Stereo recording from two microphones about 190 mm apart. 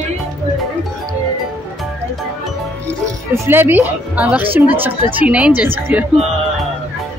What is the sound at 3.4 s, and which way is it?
Speech, 10° right (ahead or behind).